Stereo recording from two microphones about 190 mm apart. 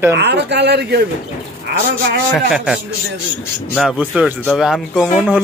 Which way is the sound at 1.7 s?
60° right (ahead or behind).